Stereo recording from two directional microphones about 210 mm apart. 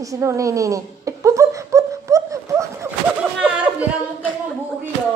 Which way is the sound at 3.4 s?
5° right (ahead or behind).